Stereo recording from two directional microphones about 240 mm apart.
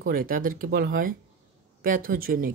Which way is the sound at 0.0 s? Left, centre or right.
Right.